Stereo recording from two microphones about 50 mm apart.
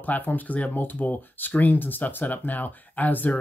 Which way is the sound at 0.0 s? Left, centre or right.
Left.